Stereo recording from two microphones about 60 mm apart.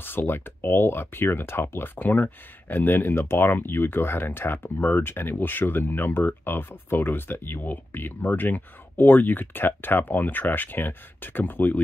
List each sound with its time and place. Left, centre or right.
0.0 s speech: left